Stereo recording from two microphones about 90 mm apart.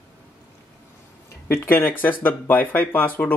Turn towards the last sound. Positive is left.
turn(degrees=20)  # may be behind; listen again after turning